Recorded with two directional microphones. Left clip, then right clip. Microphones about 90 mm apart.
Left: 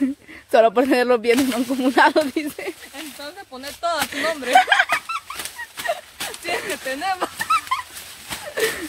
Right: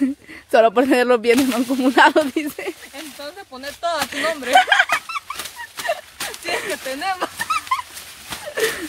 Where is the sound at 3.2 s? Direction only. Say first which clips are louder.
Right 1 dB; 30° right (ahead or behind).